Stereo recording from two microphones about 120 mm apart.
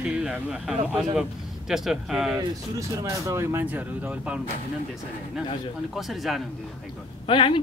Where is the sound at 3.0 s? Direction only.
25° right (ahead or behind).